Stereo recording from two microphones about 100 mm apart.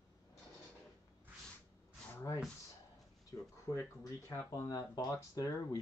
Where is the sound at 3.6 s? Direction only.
30° left (ahead or behind).